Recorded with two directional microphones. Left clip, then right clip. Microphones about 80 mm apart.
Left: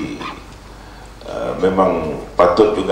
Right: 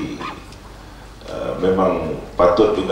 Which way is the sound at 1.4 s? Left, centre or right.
Left.